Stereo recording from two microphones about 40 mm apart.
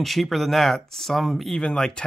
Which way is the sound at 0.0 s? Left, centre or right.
Centre.